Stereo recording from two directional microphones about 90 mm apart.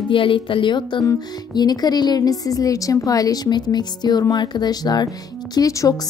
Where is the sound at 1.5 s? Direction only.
50° left (ahead or behind).